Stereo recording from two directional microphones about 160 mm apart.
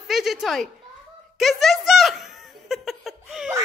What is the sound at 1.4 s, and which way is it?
Giggle, centre (ahead or behind).